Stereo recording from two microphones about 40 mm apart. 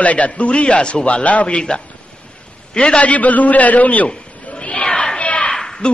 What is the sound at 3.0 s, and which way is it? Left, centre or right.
A man's voice, left.